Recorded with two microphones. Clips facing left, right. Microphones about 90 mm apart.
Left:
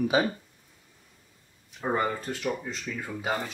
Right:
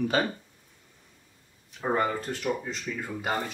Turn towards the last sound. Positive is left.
turn(degrees=0)  # may be behind; listen again after turning